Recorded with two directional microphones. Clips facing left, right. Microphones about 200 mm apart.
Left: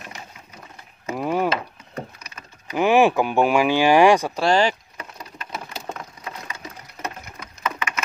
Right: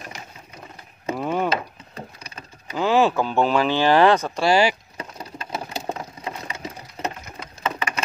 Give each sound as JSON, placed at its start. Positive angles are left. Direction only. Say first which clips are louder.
{"t": 1.1, "sound": "speech", "louder": "left 2 dB", "side_deg": 5}
{"t": 2.0, "sound": "wood", "louder": "left 3 dB", "side_deg": -30}
{"t": 2.7, "sound": "speech", "louder": "left 2 dB", "side_deg": 15}
{"t": 4.4, "sound": "speech", "louder": "even", "side_deg": -10}
{"t": 4.9, "sound": "a sound", "louder": "right 3 dB", "side_deg": -30}